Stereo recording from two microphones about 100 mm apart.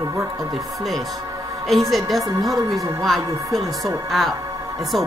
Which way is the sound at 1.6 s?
Centre (ahead or behind).